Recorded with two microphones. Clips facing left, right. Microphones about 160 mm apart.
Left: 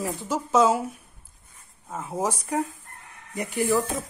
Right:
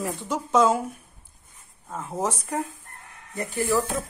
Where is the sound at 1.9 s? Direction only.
5° left (ahead or behind).